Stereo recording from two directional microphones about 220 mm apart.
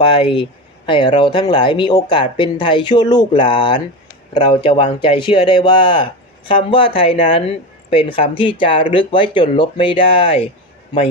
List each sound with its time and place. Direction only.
0.1 s speech: 25° left (ahead or behind)